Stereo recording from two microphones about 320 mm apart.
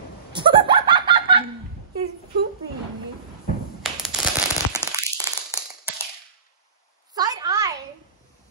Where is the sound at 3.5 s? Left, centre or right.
Left.